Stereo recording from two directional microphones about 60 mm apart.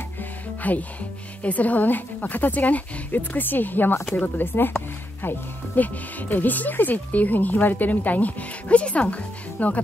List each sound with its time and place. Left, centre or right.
0.6 s speech: left